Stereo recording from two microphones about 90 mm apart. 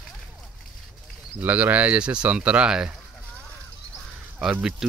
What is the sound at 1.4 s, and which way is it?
Speech, 20° right (ahead or behind).